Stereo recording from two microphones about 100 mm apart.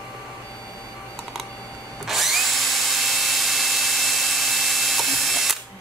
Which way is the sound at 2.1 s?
Centre (ahead or behind).